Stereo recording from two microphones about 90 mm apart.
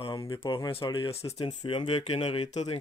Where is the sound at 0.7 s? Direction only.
70° left (ahead or behind).